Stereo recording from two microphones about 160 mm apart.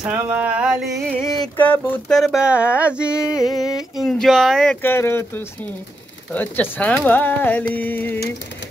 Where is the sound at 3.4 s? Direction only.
25° left (ahead or behind).